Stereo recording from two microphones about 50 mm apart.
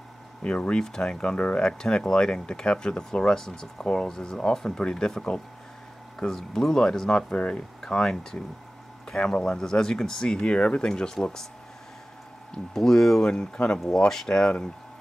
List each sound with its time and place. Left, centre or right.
0.4 s speech: left
0.8 s speech: centre
12.7 s speech: centre